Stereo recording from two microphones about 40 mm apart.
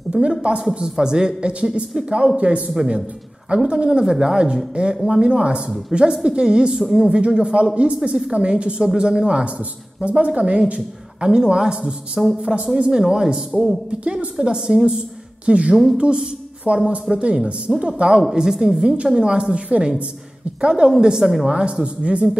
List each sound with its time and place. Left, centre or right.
0.1 s a man's voice: right
4.0 s a woman's voice: centre
12.2 s a woman's voice: centre
12.7 s a man's voice: right
13.0 s a woman's voice: centre
14.9 s speech: right
15.7 s a woman's voice: centre
16.0 s a woman's voice: right
21.8 s a man's voice: right